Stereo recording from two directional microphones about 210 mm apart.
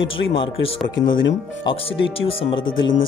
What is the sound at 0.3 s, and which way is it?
Speech, 25° left (ahead or behind).